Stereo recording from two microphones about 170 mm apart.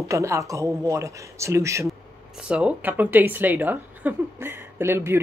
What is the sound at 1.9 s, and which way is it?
A woman's voice, 5° right (ahead or behind).